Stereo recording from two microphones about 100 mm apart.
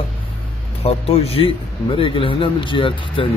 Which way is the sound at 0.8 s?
85° left.